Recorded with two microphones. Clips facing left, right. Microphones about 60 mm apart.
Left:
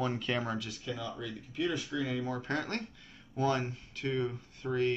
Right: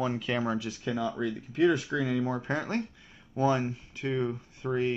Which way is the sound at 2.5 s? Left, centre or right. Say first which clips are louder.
Right 4 dB; centre.